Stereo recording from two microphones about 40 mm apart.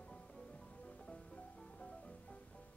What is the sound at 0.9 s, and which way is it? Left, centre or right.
Music, left.